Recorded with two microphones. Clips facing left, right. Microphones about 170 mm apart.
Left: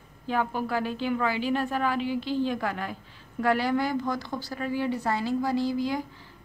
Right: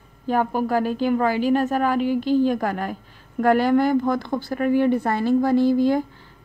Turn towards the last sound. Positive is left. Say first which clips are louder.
# right 9 dB
turn(degrees=-55)  # may be behind; listen again after turning